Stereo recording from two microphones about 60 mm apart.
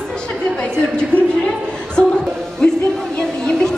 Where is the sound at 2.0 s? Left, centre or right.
Centre.